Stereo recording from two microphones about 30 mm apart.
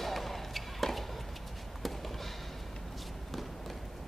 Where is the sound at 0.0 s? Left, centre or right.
Centre.